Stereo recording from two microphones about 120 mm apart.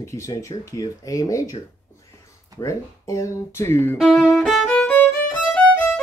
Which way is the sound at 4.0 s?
Centre (ahead or behind).